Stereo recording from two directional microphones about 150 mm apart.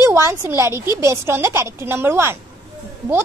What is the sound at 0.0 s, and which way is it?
A woman's voice, 20° right (ahead or behind).